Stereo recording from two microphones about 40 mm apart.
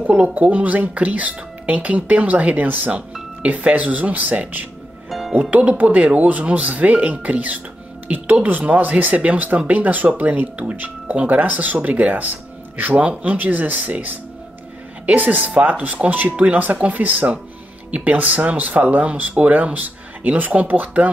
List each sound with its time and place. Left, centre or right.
0.0 s speech: right
17.0 s speech: right